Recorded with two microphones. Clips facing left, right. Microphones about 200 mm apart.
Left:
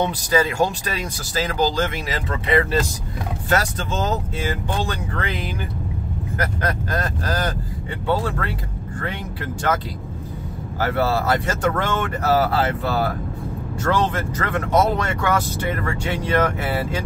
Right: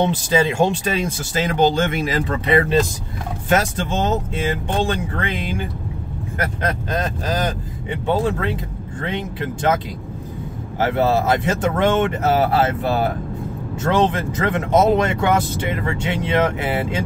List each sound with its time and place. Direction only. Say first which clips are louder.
0.0 s speech: right 2 dB; 25° right (ahead or behind)
3.4 s speech: right 3 dB; 25° right (ahead or behind)
6.6 s speech: right 4 dB; 20° right (ahead or behind)
10.8 s speech: right 3 dB; 20° right (ahead or behind)